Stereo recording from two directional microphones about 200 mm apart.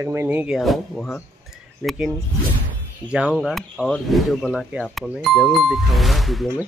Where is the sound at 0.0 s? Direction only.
10° right (ahead or behind).